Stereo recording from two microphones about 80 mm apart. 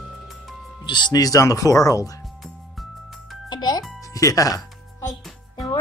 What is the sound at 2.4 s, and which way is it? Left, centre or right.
Music, centre.